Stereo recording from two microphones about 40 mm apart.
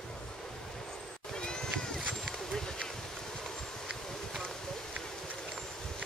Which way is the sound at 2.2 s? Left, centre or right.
Centre.